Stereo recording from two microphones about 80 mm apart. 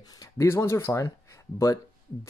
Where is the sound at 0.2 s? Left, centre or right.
Left.